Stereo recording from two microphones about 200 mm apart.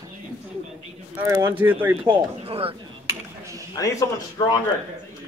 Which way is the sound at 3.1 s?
15° right (ahead or behind).